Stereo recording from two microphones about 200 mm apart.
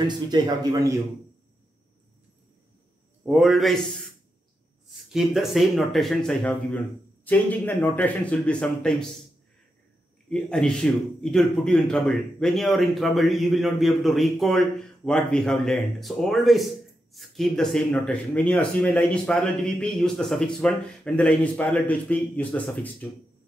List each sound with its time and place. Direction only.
0.0 s a man's voice: 20° right (ahead or behind)
3.3 s speech: centre (ahead or behind)
5.1 s speech: centre (ahead or behind)
10.3 s speech: centre (ahead or behind)